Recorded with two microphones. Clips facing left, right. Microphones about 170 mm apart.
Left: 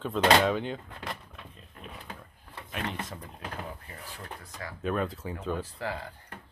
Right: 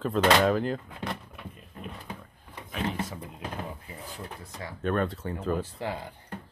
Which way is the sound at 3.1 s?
10° right (ahead or behind).